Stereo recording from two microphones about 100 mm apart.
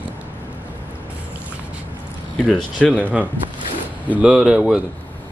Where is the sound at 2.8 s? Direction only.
15° left (ahead or behind).